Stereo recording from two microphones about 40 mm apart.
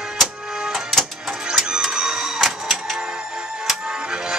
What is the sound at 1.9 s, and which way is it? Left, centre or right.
Printer, centre.